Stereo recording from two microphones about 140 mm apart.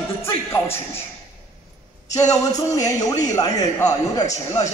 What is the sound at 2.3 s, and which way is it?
A man's voice, 25° left (ahead or behind).